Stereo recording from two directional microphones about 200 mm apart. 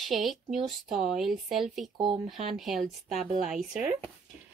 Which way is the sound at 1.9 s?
25° right (ahead or behind).